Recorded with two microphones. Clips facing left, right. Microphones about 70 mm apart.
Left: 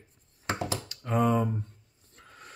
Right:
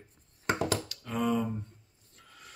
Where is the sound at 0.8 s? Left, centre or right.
Left.